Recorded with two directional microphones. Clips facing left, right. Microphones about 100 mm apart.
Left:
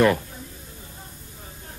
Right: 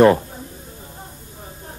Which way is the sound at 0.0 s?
35° right (ahead or behind).